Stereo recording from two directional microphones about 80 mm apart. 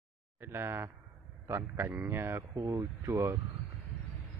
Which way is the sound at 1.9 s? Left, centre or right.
Right.